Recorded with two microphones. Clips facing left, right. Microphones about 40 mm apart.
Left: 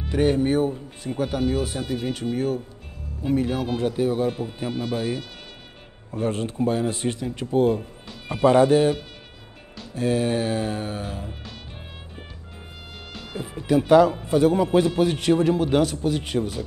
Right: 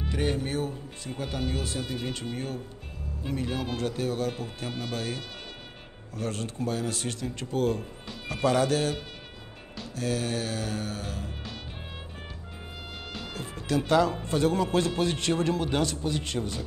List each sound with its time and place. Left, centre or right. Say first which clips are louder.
0.1 s speech: left 10 dB; centre
6.1 s speech: left 8 dB; left
9.9 s speech: left 7 dB; left
13.3 s speech: left 8 dB; centre